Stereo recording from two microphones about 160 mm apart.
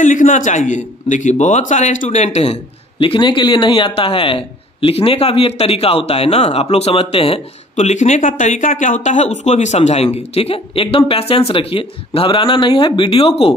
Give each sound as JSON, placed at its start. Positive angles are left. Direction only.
{"t": 0.0, "sound": "speech", "side_deg": 50}